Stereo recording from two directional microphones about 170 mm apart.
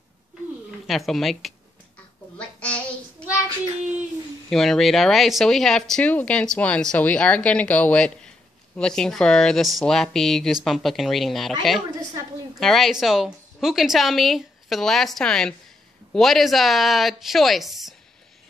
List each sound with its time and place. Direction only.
0.8 s speech: centre (ahead or behind)
2.3 s child singing: 5° left (ahead or behind)
4.5 s speech: centre (ahead or behind)
11.9 s a sound: 20° right (ahead or behind)
12.5 s speech: centre (ahead or behind)